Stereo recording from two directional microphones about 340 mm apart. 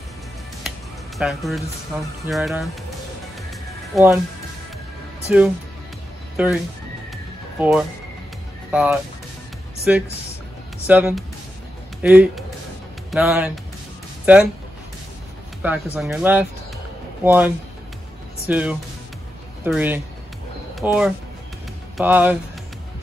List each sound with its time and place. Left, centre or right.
0.7 s music: centre
2.2 s speech: centre
3.4 s music: centre
5.3 s speech: centre
8.7 s speech: centre
15.6 s speech: centre
18.5 s speech: centre